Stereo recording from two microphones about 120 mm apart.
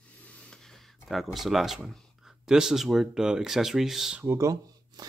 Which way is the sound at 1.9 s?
5° right (ahead or behind).